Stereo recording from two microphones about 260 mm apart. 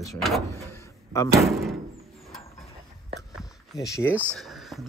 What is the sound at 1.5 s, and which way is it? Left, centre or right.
Speech, centre.